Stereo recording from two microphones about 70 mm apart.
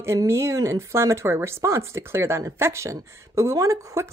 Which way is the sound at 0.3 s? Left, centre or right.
Right.